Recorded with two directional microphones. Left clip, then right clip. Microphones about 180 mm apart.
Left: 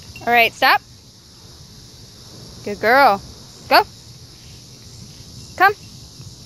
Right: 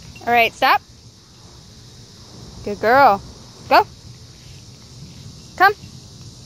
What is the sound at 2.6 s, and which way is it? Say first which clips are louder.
Speech: even; centre (ahead or behind).